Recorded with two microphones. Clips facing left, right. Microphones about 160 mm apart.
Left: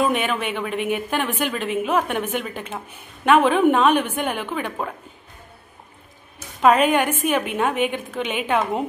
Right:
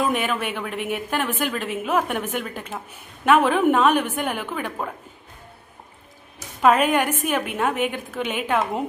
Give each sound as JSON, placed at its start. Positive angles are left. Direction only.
{"t": 0.1, "sound": "a woman's voice", "side_deg": -5}
{"t": 6.6, "sound": "a woman's voice", "side_deg": 0}